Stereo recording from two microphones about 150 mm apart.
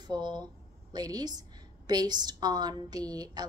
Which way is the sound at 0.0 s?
30° right (ahead or behind).